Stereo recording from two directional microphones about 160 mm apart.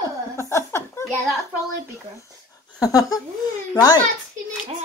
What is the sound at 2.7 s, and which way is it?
A child's voice, 20° left (ahead or behind).